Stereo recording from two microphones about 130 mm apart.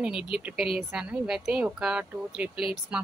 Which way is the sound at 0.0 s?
5° right (ahead or behind).